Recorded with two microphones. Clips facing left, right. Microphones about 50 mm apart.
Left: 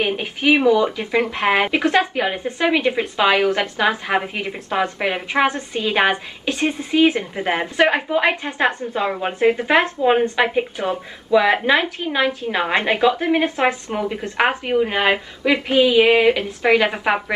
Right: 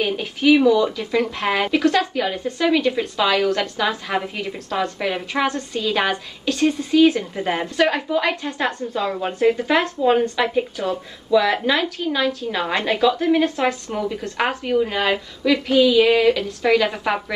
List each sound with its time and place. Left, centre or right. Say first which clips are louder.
0.0 s a woman's voice: even; left